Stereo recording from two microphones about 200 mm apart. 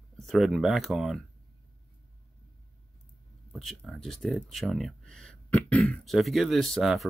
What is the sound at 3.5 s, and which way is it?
Speech, centre (ahead or behind).